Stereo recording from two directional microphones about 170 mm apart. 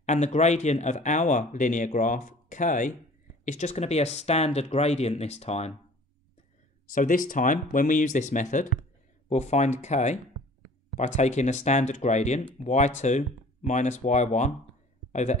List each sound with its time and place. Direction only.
0.0 s speech: 45° left (ahead or behind)
6.9 s speech: 50° left (ahead or behind)